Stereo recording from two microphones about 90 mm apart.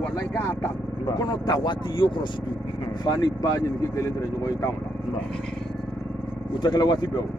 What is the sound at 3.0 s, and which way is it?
Speech, 45° left (ahead or behind).